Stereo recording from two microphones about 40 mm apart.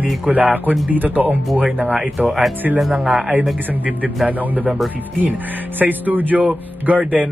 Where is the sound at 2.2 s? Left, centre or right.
Right.